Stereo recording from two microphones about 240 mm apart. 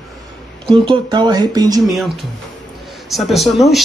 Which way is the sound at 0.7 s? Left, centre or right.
Centre.